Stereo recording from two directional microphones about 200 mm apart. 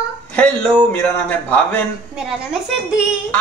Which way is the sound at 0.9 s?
10° left (ahead or behind).